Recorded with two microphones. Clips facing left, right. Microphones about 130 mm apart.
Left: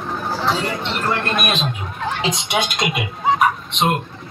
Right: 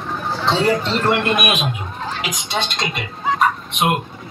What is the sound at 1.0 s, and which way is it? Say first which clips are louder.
Speech: right 2 dB; 15° right (ahead or behind).